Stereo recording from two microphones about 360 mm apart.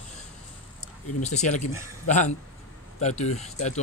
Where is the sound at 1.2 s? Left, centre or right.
Centre.